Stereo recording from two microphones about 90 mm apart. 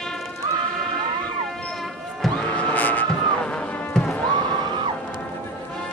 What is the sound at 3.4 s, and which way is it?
Music, 10° left (ahead or behind).